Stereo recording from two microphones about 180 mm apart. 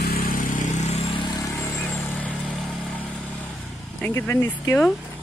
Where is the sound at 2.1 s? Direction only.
10° left (ahead or behind).